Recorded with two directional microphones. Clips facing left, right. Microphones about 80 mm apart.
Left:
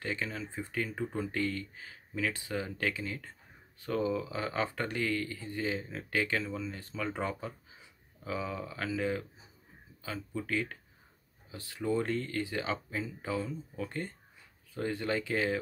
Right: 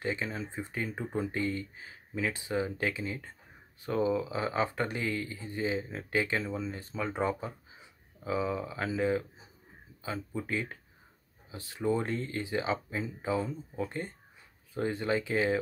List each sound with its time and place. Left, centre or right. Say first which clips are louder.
0.0 s speech: right 2 dB; right